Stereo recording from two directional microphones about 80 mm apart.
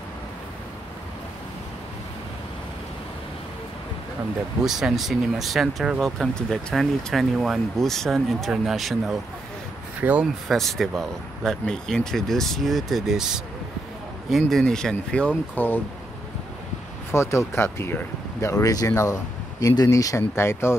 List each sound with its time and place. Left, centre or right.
4.6 s speech: centre
9.9 s speech: centre
10.5 s speech: centre
14.3 s speech: centre; by 15.8 s left
17.1 s speech: left
18.5 s speech: left